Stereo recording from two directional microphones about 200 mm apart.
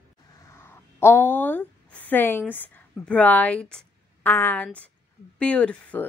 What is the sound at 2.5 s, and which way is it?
A woman's voice, 10° left (ahead or behind).